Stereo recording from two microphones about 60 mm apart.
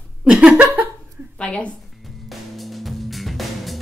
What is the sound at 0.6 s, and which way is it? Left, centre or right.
Laughter, right.